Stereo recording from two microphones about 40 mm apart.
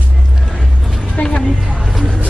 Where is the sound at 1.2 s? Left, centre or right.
Left.